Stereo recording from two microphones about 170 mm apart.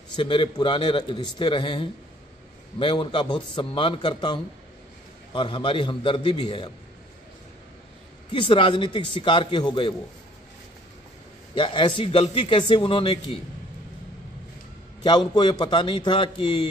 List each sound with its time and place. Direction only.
0.1 s a man's voice: 30° left (ahead or behind)
8.3 s a man's voice: 30° left (ahead or behind)
11.5 s a man's voice: 30° left (ahead or behind)
15.0 s a man's voice: 25° left (ahead or behind)